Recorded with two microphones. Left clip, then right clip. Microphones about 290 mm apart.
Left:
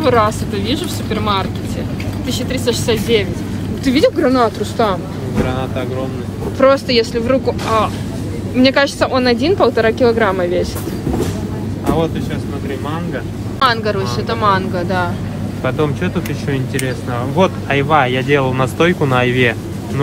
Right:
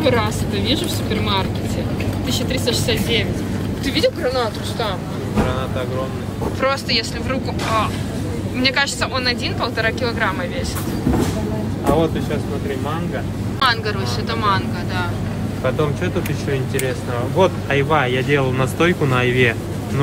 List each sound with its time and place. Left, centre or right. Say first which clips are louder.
0.0 s speech: left 5 dB; centre
6.6 s speech: left 8 dB; centre
13.6 s speech: left 4 dB; centre
15.6 s speech: left 3 dB; centre